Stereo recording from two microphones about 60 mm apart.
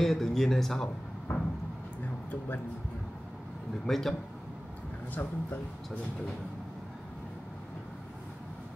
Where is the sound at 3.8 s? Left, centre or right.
Centre.